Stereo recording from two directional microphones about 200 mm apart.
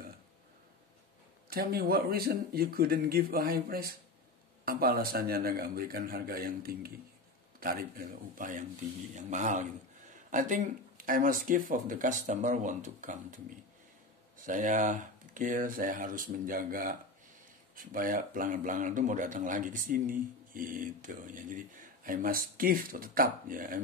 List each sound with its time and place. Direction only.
1.5 s a man's voice: 50° right (ahead or behind)
14.4 s a man's voice: 40° right (ahead or behind)